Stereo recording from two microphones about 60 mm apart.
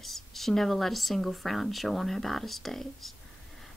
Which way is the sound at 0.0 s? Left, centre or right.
Centre.